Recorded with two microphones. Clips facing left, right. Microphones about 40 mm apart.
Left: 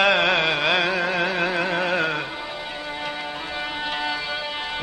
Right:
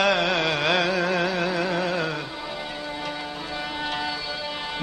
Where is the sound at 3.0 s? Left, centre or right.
Left.